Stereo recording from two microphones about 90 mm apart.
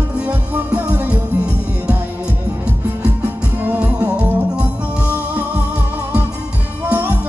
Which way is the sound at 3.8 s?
15° right (ahead or behind).